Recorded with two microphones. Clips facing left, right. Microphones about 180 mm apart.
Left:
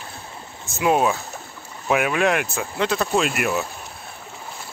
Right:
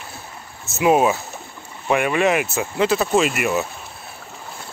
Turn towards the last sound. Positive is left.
turn(degrees=0)  # may be behind; listen again after turning